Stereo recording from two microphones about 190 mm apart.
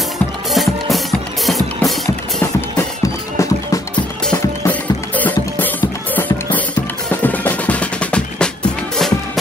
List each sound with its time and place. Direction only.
0.5 s music: centre (ahead or behind)
2.4 s music: 15° left (ahead or behind)